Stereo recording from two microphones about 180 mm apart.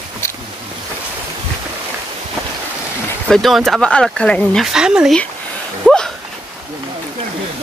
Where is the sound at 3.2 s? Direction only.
Centre (ahead or behind).